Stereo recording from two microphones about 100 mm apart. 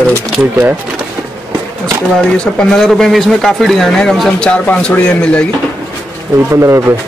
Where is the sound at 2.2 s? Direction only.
10° left (ahead or behind).